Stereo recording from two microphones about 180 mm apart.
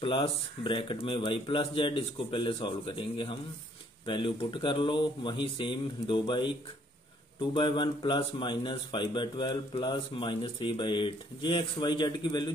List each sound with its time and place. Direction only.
0.0 s speech: 30° left (ahead or behind)